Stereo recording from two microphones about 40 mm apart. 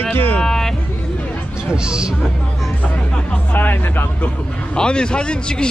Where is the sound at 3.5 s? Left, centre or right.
Left.